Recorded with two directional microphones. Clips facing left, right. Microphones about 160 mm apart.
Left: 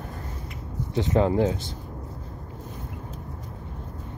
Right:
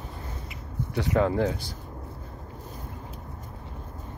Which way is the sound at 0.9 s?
20° left (ahead or behind).